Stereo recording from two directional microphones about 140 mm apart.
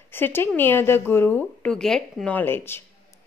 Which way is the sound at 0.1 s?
15° left (ahead or behind).